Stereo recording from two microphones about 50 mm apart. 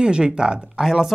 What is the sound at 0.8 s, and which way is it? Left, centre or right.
Speech, centre.